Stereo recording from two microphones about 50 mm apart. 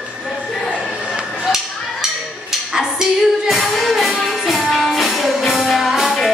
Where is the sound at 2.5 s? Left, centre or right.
Centre.